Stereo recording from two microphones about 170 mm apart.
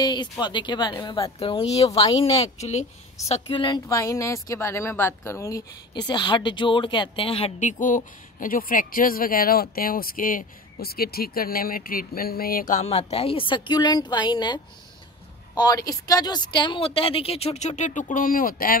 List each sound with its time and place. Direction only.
0.0 s a woman's voice: 25° left (ahead or behind)
7.8 s a woman's voice: 50° left (ahead or behind)